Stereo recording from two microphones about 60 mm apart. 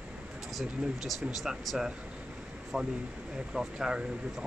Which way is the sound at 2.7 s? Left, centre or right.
Centre.